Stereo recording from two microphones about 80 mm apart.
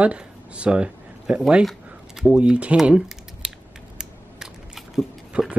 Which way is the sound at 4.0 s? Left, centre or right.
Centre.